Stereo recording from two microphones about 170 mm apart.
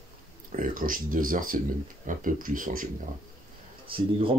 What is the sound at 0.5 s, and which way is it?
Speech, 55° right (ahead or behind).